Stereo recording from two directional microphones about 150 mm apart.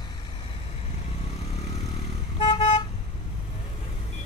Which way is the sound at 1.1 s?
45° left (ahead or behind).